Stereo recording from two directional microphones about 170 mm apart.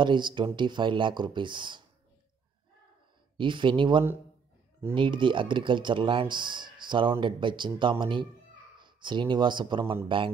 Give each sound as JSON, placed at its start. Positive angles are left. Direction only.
{"t": 0.0, "sound": "speech", "side_deg": -30}
{"t": 3.3, "sound": "speech", "side_deg": -30}